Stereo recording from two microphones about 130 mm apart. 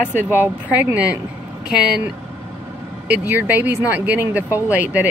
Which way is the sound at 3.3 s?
15° right (ahead or behind).